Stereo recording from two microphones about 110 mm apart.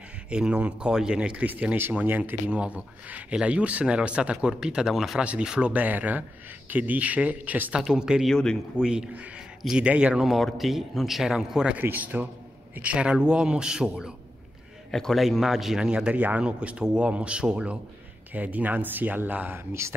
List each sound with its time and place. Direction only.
0.3 s a man's voice: 10° right (ahead or behind)
8.3 s speech: 5° left (ahead or behind)
8.7 s a man's voice: 5° right (ahead or behind)